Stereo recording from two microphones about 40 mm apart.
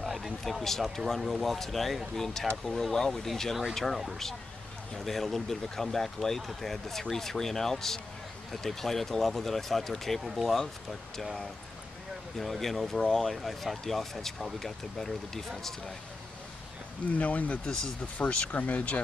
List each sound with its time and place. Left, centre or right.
0.0 s speech: centre
12.4 s speech: centre
17.1 s speech: left